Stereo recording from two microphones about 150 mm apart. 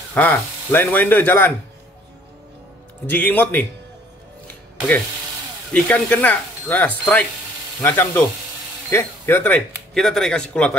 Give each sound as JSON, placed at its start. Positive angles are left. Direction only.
{"t": 0.1, "sound": "speech", "side_deg": 10}
{"t": 3.1, "sound": "speech", "side_deg": 10}
{"t": 5.7, "sound": "speech", "side_deg": 10}
{"t": 9.9, "sound": "a man's voice", "side_deg": 0}